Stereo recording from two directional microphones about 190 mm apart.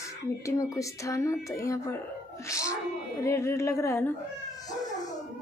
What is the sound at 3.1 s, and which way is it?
Speech, 15° left (ahead or behind).